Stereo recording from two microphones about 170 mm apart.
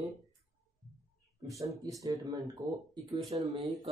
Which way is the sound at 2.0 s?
20° right (ahead or behind).